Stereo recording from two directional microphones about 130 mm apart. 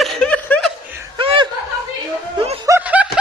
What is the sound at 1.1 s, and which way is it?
Laughter, 40° right (ahead or behind).